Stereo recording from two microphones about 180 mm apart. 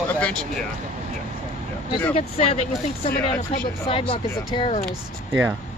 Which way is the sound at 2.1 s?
35° left (ahead or behind).